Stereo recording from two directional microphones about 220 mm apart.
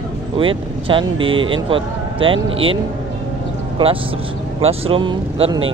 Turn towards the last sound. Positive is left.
turn(degrees=-25)  # may be behind; listen again after turning